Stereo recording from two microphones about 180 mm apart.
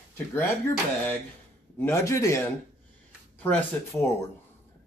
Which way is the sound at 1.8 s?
15° left (ahead or behind).